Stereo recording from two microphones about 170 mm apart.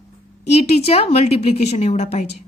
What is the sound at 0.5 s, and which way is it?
A woman's voice, 40° left (ahead or behind).